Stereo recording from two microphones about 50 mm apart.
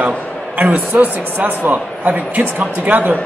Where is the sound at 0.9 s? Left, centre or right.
Right.